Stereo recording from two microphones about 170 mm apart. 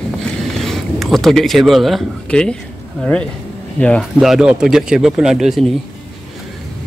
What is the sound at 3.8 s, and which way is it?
Speech, 5° left (ahead or behind).